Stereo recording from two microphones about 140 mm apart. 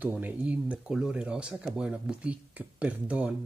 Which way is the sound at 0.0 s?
10° right (ahead or behind).